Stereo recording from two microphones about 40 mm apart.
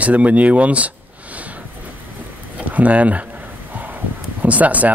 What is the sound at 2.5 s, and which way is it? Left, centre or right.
Speech, right.